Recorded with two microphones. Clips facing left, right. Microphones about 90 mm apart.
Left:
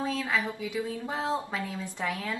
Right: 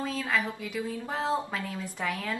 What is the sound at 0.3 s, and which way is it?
Speech, 5° left (ahead or behind).